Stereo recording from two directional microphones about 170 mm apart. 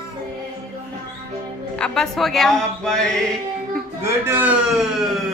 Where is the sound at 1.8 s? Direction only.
5° left (ahead or behind).